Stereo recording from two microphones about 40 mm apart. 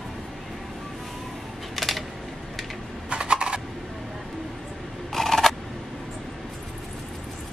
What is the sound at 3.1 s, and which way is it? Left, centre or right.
Typing, right.